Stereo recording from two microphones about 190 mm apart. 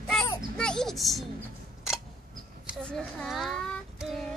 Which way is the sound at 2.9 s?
5° left (ahead or behind).